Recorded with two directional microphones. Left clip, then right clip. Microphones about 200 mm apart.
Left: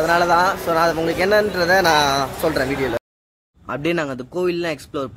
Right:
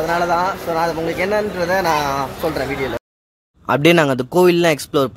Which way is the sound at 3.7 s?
40° right (ahead or behind).